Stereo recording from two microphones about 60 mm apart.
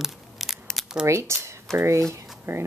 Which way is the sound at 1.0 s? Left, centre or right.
Right.